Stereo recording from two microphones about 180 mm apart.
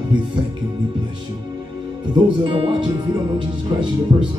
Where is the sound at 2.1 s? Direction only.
25° right (ahead or behind).